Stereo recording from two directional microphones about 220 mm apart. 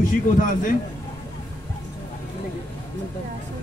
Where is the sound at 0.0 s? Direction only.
35° left (ahead or behind).